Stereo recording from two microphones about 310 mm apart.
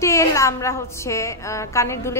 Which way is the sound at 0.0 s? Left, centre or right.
Centre.